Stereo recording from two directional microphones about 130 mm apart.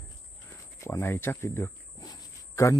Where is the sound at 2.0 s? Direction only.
25° left (ahead or behind).